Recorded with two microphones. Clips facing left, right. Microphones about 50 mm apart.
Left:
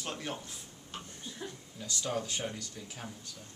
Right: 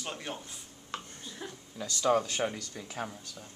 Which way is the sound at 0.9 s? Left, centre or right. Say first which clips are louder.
Right 5 dB; right.